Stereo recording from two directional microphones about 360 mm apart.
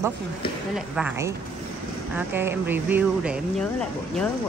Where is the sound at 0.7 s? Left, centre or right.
Centre.